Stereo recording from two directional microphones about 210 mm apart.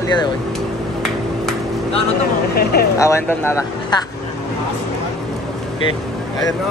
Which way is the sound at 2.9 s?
15° left (ahead or behind).